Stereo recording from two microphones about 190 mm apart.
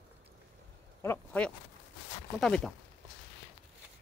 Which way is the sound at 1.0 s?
10° left (ahead or behind).